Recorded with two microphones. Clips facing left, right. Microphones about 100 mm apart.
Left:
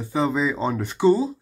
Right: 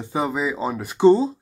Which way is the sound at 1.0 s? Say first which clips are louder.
Right 4 dB; 25° right (ahead or behind).